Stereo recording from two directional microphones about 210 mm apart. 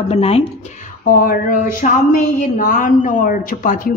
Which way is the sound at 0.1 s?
30° left (ahead or behind).